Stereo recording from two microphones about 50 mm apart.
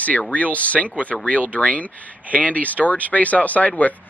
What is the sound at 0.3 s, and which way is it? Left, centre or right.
Speech, left.